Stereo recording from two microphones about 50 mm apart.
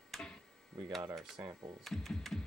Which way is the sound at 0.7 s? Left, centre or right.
Centre.